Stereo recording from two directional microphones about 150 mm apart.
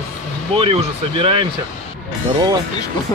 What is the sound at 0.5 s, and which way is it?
Speech, 35° right (ahead or behind).